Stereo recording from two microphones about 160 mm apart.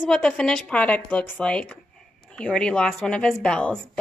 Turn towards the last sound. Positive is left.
turn(degrees=5)  # may be behind; listen again after turning